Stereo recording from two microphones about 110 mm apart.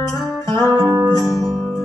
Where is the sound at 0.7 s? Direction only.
40° right (ahead or behind).